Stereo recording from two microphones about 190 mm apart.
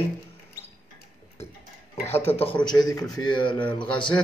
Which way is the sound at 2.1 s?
30° left (ahead or behind).